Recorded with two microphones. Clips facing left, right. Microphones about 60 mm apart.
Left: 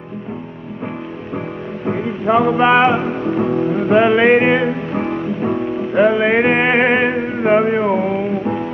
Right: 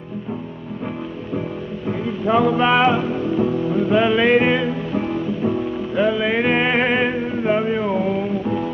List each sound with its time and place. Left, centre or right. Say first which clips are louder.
1.9 s music: left 3 dB; left
3.0 s music: left 2 dB; left
7.2 s music: left 5 dB; left